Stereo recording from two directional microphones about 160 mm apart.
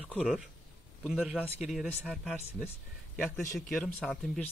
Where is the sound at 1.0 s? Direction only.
5° right (ahead or behind).